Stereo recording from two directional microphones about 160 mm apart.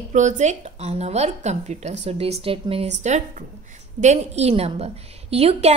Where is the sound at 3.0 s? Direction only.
50° right (ahead or behind).